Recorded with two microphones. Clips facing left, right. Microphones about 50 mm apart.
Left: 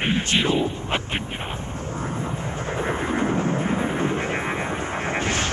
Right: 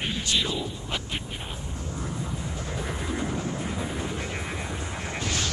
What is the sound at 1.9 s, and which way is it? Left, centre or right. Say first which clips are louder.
Vehicle: left 5 dB; left.